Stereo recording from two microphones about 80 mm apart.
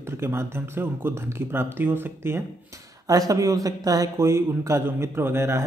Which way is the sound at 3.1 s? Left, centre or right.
Right.